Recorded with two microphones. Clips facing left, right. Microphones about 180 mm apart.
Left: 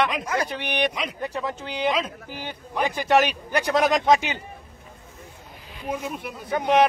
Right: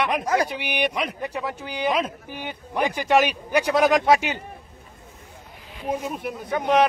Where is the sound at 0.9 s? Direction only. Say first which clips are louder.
Right 3 dB; 60° right (ahead or behind).